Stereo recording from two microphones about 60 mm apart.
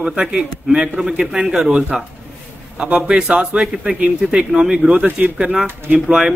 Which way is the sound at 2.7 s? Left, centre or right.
Right.